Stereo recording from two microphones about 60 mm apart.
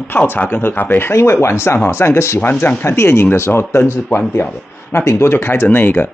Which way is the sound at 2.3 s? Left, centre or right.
Left.